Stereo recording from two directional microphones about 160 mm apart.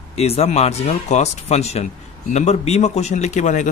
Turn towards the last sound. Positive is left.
turn(degrees=50)  # may be behind; listen again after turning